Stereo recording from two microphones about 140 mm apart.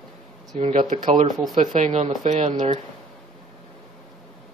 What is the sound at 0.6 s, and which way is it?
Speech, 55° right (ahead or behind).